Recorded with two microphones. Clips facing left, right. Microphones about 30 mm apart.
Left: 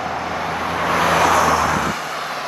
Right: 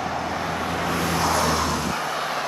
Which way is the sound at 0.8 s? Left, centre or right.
Left.